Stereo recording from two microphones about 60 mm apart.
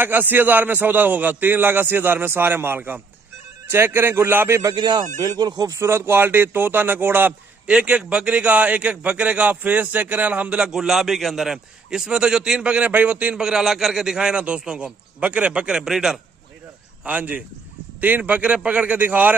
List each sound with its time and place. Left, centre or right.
0.0 s a man's voice: right
5.2 s speech: right
5.9 s a man's voice: right
7.8 s a man's voice: centre
12.7 s a man's voice: right
13.4 s a man's voice: centre
17.0 s a man's voice: right